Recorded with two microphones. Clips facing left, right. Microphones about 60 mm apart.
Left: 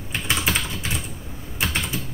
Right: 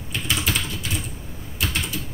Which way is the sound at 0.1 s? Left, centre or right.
Left.